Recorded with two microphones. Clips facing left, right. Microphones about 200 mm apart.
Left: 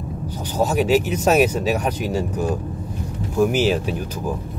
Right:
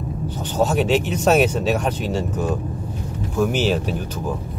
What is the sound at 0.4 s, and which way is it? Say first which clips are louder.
Speech: even; 10° left (ahead or behind).